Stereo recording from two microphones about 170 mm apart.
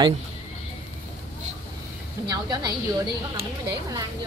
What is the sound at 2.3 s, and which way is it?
A woman's voice, 25° right (ahead or behind).